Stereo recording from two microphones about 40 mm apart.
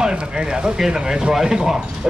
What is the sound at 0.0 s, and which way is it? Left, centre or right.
Speech, right.